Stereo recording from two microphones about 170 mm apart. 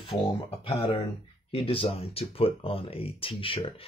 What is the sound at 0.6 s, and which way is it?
Speech, 35° left (ahead or behind).